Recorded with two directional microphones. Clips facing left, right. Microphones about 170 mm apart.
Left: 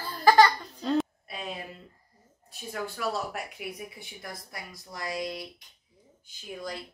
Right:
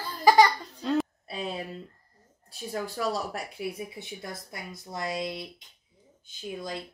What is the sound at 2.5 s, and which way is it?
Speech, 35° right (ahead or behind).